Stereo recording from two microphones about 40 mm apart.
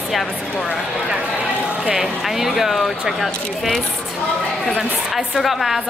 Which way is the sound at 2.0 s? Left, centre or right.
Centre.